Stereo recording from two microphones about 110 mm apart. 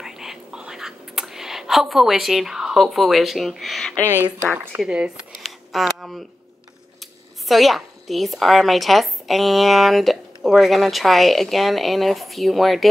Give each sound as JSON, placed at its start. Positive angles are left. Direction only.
{"t": 0.0, "sound": "whispering", "side_deg": -5}
{"t": 4.1, "sound": "speech", "side_deg": -15}
{"t": 5.4, "sound": "a sound", "side_deg": 0}
{"t": 7.0, "sound": "a woman's voice", "side_deg": 0}